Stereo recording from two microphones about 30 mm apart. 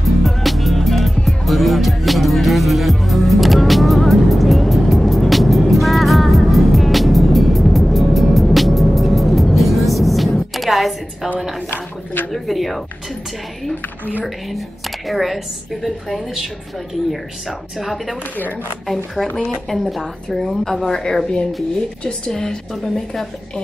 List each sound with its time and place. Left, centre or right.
0.0 s music: centre
8.5 s vehicle: centre
10.5 s music: centre
12.3 s a sound: centre
15.0 s a woman's voice: centre
19.7 s a woman's voice: centre